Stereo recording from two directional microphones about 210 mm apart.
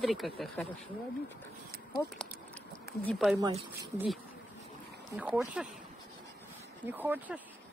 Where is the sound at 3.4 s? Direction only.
20° right (ahead or behind).